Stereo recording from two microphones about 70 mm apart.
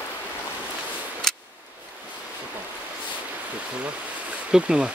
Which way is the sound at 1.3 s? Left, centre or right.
Centre.